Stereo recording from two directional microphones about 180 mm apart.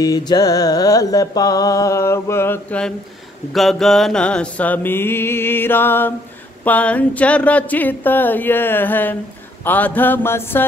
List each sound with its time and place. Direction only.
0.0 s mantra: 20° left (ahead or behind)